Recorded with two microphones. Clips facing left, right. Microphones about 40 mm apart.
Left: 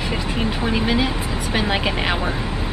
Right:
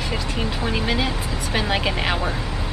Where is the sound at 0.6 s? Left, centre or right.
Centre.